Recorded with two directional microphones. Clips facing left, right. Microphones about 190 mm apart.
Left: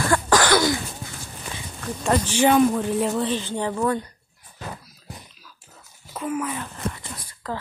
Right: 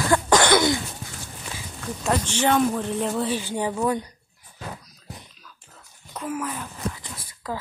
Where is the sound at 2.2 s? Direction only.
10° left (ahead or behind).